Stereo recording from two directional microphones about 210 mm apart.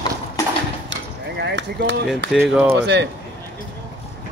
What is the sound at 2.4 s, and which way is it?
Speech, 10° right (ahead or behind).